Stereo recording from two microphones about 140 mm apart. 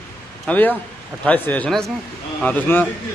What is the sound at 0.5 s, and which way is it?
Speech, 10° left (ahead or behind).